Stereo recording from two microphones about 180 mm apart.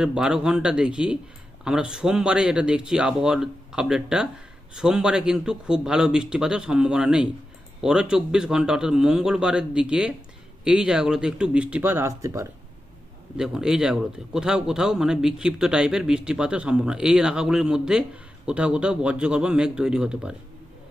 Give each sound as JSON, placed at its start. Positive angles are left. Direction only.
{"t": 0.0, "sound": "a man's voice", "side_deg": -5}
{"t": 13.4, "sound": "a man's voice", "side_deg": -5}